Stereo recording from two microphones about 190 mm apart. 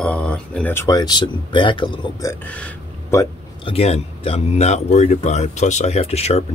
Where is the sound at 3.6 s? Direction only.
30° left (ahead or behind).